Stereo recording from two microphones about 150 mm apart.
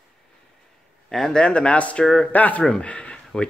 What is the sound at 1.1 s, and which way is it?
Speech, 5° left (ahead or behind).